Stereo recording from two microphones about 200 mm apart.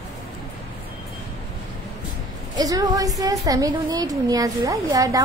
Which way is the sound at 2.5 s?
20° right (ahead or behind).